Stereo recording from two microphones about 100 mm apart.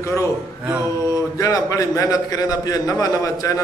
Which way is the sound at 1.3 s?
35° left (ahead or behind).